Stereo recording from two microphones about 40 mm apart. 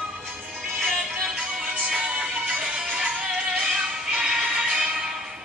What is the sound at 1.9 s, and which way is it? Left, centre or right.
Music, right.